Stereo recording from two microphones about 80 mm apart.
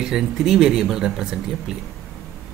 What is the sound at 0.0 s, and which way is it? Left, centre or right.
Speech, centre.